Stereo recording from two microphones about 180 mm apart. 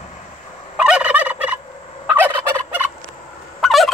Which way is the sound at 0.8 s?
5° right (ahead or behind).